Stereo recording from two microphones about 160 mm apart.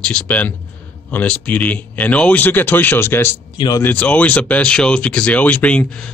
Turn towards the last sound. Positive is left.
turn(degrees=5)  # may be behind; listen again after turning